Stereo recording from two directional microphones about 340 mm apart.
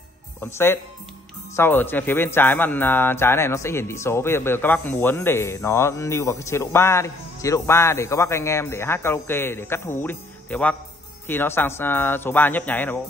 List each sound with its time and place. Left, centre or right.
0.4 s a man's voice: centre